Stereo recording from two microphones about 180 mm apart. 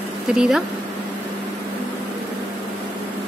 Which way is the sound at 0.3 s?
5° right (ahead or behind).